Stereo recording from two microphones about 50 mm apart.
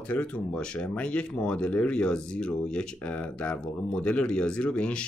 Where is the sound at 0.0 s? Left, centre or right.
Left.